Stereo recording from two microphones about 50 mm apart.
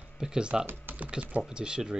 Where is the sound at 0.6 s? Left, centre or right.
Right.